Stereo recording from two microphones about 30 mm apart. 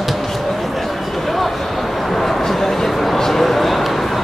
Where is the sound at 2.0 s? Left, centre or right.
Centre.